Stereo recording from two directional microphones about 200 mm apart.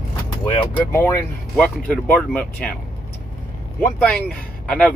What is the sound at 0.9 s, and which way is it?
Speech, 10° left (ahead or behind).